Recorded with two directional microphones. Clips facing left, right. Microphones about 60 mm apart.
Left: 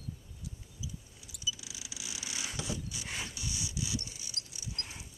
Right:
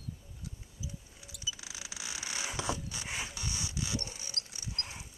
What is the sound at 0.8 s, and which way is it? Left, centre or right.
Vehicle, right.